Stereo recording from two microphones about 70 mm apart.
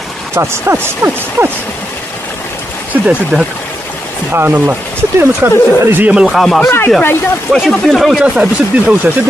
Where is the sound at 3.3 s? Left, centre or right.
Centre.